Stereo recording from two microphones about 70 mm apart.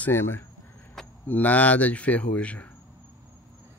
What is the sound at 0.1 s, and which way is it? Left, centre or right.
Speech, left.